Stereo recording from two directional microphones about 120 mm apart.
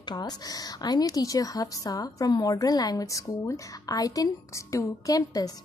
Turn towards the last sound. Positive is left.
turn(degrees=30)  # may be behind; listen again after turning